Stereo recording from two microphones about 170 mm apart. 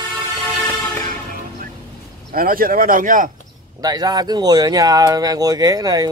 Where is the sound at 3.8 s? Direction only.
20° right (ahead or behind).